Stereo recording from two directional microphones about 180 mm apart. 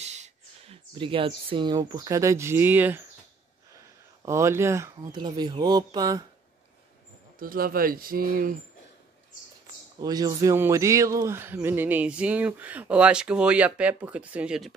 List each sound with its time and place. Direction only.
0.0 s speech: 40° right (ahead or behind); by 3.0 s 10° right (ahead or behind)
4.3 s speech: 15° right (ahead or behind)
7.3 s speech: 55° right (ahead or behind)
9.9 s speech: 20° right (ahead or behind); by 14.7 s 5° right (ahead or behind)